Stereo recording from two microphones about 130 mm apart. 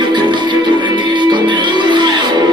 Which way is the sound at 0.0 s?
35° right (ahead or behind).